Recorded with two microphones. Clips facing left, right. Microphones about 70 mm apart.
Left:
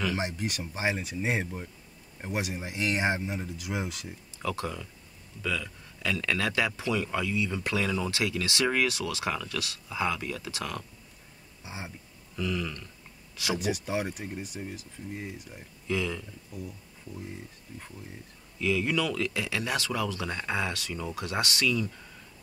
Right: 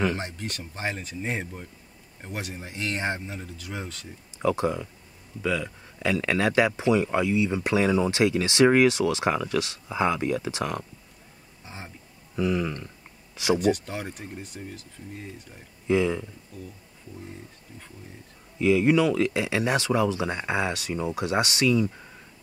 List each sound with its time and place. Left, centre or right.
0.2 s speech: centre
4.4 s speech: right
11.6 s speech: centre
12.4 s speech: right
13.6 s speech: centre
15.9 s speech: right
16.5 s speech: centre
18.6 s speech: right